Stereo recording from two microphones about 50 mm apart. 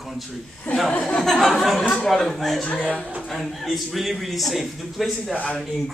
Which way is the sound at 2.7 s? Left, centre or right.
Left.